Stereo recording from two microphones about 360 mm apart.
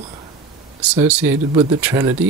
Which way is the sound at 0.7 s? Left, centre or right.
Centre.